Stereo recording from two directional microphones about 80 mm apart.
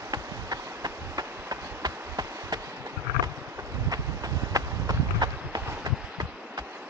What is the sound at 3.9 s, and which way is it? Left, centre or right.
Run, right.